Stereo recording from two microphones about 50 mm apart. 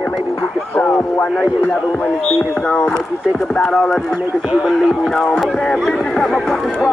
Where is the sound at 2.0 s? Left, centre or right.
Left.